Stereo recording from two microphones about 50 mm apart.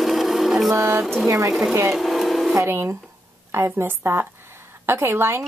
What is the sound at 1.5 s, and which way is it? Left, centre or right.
Speech, centre.